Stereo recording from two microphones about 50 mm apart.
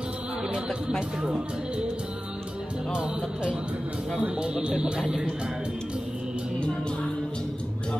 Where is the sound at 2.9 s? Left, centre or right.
Centre.